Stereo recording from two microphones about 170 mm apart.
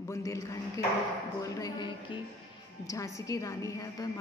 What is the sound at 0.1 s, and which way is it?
Speech, 20° left (ahead or behind).